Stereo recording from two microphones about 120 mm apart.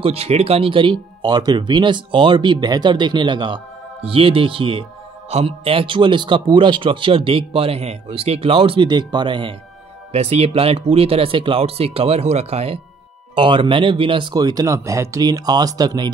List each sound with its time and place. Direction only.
0.0 s a man's voice: 55° right (ahead or behind)
1.2 s a man's voice: 35° right (ahead or behind)
10.1 s speech: 55° right (ahead or behind)
13.3 s speech: 45° right (ahead or behind)